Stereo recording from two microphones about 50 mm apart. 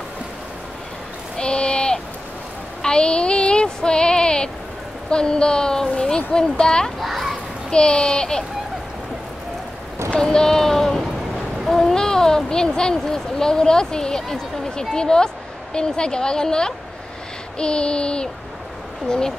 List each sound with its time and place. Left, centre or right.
1.4 s a sound: centre
5.1 s a child's voice: centre
7.0 s children playing: centre
7.7 s a child's voice: centre
10.1 s a sound: centre
11.6 s speech: centre
17.6 s child singing: centre
19.0 s a child's voice: centre